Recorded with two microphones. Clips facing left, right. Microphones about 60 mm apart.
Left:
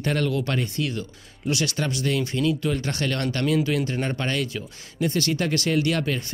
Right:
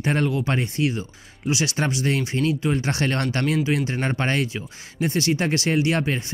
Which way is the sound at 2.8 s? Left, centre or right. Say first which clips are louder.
Right 3 dB; right.